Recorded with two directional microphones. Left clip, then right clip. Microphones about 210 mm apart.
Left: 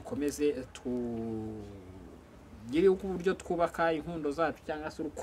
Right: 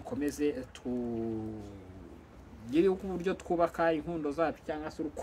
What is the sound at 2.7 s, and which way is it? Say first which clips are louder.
Speech: left 2 dB; 15° left (ahead or behind).